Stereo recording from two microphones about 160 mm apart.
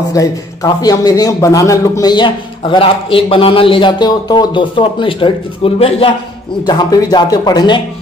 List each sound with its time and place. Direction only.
0.1 s a man's voice: 20° left (ahead or behind); by 6.1 s 35° left (ahead or behind)
6.6 s a man's voice: 25° left (ahead or behind)